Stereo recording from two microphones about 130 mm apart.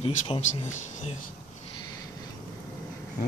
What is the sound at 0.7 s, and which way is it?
Speech, 70° left (ahead or behind).